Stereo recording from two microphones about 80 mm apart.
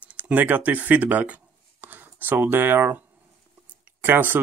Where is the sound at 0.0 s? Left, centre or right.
Centre.